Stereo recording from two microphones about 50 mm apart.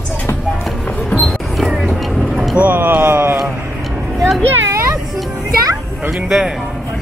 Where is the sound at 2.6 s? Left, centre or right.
Right.